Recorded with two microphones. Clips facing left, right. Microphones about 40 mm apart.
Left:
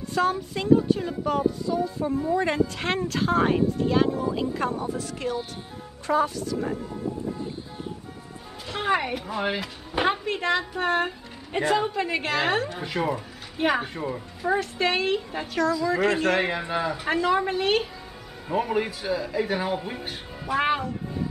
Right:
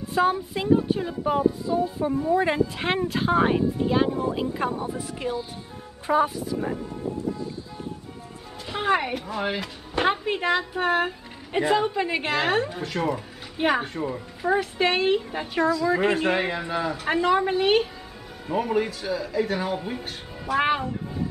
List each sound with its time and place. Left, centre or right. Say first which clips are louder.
0.1 s speech: right 2 dB; centre
8.6 s speech: right 1 dB; centre
10.2 s a woman's voice: right 1 dB; centre
13.6 s a woman's voice: right 1 dB; centre
16.3 s speech: left 1 dB; centre
17.1 s speech: right 2 dB; centre
18.5 s speech: right 1 dB; centre
20.5 s speech: right 1 dB; centre